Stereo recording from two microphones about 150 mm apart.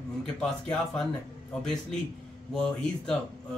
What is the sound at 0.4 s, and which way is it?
Speech, 5° left (ahead or behind).